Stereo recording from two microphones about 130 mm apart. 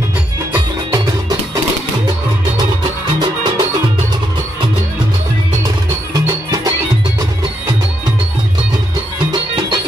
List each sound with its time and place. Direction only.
3.2 s music: 35° right (ahead or behind)
6.1 s music: 30° right (ahead or behind)
9.3 s music: 35° right (ahead or behind)